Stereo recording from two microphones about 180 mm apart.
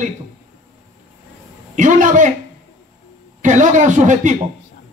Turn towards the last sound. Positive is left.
turn(degrees=-45)  # may be behind; listen again after turning